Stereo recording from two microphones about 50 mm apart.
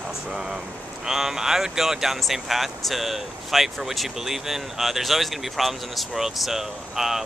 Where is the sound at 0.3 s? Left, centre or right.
Centre.